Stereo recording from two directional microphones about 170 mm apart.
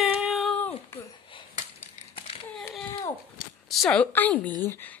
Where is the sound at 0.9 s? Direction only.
15° left (ahead or behind).